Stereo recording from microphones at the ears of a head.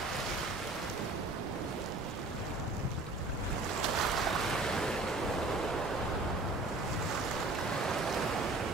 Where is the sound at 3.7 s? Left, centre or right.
Right.